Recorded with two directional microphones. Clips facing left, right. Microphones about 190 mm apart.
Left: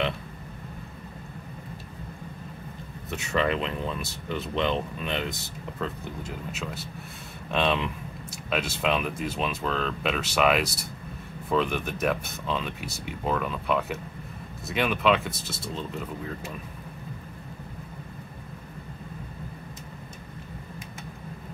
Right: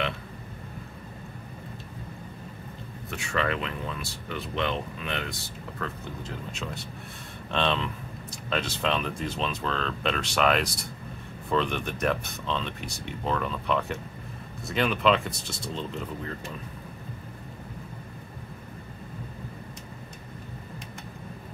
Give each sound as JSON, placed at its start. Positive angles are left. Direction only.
{"t": 3.1, "sound": "speech", "side_deg": 20}
{"t": 6.5, "sound": "speech", "side_deg": 5}